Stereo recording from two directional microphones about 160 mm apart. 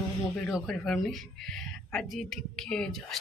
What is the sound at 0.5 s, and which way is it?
Speech, centre (ahead or behind).